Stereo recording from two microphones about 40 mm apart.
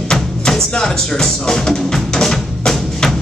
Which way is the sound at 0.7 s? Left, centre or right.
Centre.